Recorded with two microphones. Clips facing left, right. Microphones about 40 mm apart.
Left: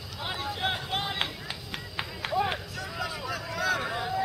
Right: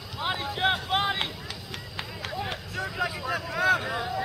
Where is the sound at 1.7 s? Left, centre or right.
Left.